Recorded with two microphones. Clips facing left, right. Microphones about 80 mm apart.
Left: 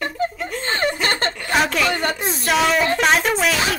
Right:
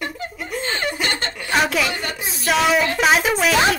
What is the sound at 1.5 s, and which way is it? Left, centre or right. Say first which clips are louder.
Speech: even; centre.